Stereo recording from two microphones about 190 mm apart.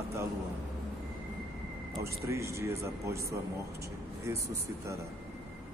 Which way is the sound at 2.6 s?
15° right (ahead or behind).